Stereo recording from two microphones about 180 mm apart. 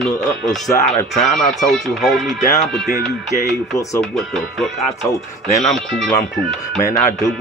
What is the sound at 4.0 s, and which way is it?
Speech, centre (ahead or behind).